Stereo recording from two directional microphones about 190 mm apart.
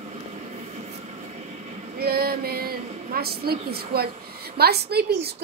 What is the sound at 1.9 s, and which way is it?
A woman's voice, 55° right (ahead or behind).